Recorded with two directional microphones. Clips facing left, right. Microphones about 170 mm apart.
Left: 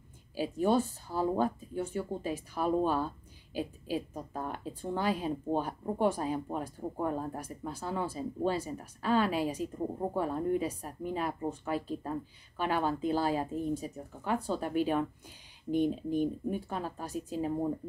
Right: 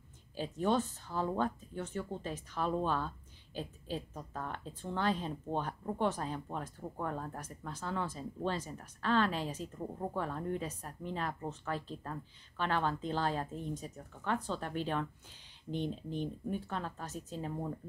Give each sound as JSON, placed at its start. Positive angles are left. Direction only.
{"t": 0.4, "sound": "speech", "side_deg": 10}
{"t": 17.5, "sound": "speech", "side_deg": 20}